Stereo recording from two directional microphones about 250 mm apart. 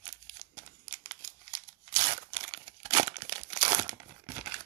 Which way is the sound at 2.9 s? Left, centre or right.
Centre.